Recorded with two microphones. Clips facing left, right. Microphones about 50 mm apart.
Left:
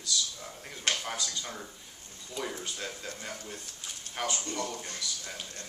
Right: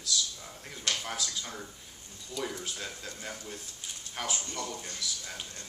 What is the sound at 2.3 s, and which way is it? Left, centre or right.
Speech, centre.